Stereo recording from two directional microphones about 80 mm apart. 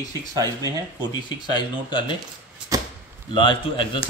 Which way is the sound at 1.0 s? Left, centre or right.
Left.